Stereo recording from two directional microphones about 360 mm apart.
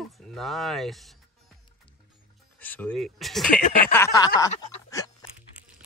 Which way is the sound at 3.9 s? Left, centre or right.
Centre.